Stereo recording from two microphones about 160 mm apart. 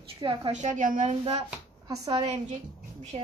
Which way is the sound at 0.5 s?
50° right (ahead or behind).